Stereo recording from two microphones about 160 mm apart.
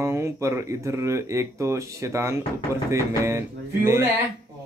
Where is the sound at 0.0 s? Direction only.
15° right (ahead or behind).